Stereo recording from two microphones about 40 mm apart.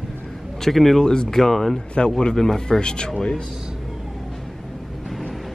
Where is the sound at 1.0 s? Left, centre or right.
Centre.